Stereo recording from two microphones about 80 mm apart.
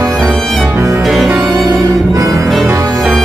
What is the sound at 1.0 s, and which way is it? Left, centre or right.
Music, centre.